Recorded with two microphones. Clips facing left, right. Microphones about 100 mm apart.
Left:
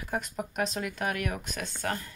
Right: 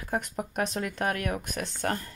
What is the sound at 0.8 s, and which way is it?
Speech, 40° right (ahead or behind).